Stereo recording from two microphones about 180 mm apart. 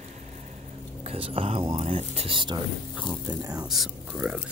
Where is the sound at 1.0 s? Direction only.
30° right (ahead or behind).